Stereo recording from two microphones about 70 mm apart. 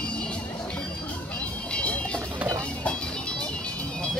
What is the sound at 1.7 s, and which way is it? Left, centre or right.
Music, centre.